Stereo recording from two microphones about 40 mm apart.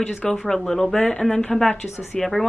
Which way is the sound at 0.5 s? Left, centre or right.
Centre.